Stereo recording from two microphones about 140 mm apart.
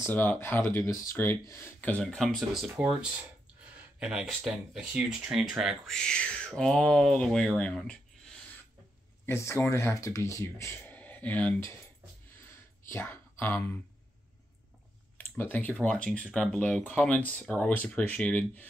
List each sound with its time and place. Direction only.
0.0 s speech: 15° left (ahead or behind)
2.0 s speech: centre (ahead or behind)
2.6 s speech: 10° right (ahead or behind); by 8.0 s 5° left (ahead or behind)
9.2 s speech: 20° left (ahead or behind)
12.4 s a sound: 20° left (ahead or behind)
15.1 s speech: 15° left (ahead or behind)